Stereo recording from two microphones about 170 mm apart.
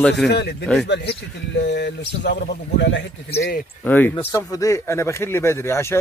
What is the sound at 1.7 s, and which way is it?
Speech, 90° left.